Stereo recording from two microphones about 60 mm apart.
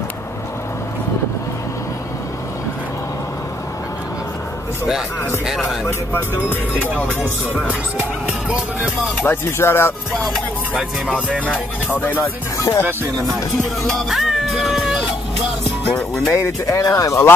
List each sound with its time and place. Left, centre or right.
9.2 s speech: left
11.1 s music: right
11.9 s speech: left
12.2 s speech: left
14.0 s cat: centre
16.3 s speech: left